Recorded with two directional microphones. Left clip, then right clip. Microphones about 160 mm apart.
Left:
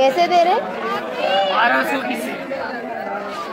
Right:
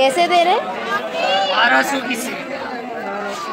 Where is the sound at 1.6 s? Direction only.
30° right (ahead or behind).